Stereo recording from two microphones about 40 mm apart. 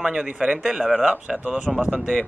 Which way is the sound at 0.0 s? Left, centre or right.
Right.